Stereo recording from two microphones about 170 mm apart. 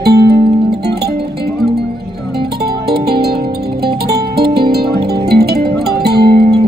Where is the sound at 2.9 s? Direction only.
70° right (ahead or behind).